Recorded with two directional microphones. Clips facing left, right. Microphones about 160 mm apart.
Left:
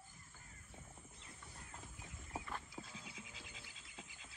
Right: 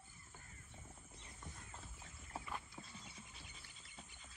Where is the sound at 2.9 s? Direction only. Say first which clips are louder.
Left 3 dB; 90° left.